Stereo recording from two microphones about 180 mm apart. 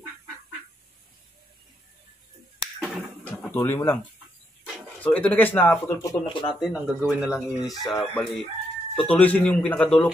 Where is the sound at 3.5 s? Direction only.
10° left (ahead or behind).